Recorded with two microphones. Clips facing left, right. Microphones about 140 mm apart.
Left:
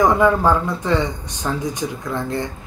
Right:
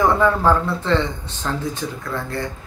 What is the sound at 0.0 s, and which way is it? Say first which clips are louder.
Speech: left 2 dB; 15° left (ahead or behind).